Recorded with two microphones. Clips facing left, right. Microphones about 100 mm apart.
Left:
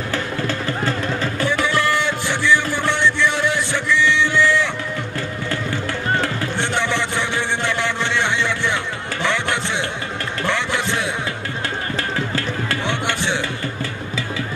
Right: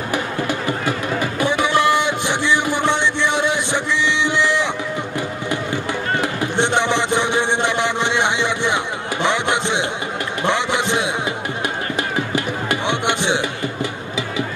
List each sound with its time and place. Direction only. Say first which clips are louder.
0.1 s music: right 2 dB; 15° right (ahead or behind)
6.1 s music: right 4 dB; 15° right (ahead or behind)
12.6 s a sound: right 3 dB; 20° right (ahead or behind)